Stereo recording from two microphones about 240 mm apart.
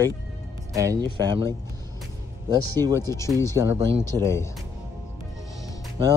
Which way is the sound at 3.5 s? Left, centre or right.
Centre.